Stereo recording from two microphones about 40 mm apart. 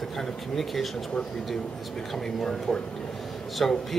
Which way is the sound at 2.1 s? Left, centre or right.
Centre.